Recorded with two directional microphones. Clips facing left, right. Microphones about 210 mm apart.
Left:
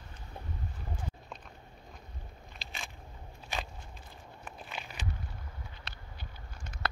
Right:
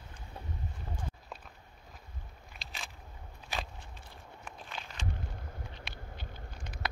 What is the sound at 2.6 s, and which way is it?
Biting, centre (ahead or behind).